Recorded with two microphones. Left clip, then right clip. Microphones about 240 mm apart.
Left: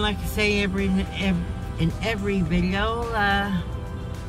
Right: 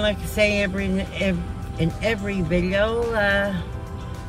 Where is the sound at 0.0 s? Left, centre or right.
Centre.